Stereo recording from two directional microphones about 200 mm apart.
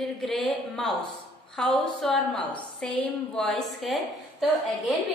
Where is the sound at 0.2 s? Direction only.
5° left (ahead or behind).